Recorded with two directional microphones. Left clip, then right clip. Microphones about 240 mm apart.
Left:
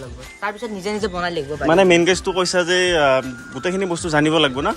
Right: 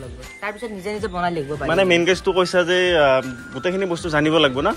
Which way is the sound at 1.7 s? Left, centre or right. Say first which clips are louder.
Left 3 dB; left.